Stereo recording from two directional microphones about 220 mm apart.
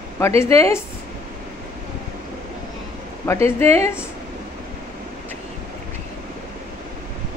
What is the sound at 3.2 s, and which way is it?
Speech, 10° left (ahead or behind).